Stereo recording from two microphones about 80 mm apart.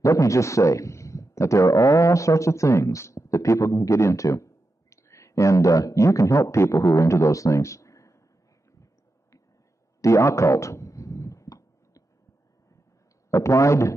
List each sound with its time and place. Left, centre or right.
0.0 s speech: left
10.0 s a sound: left
13.3 s a man's voice: left